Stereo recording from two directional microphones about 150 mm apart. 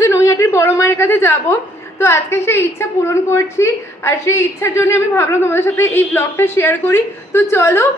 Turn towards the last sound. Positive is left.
turn(degrees=15)  # may be behind; listen again after turning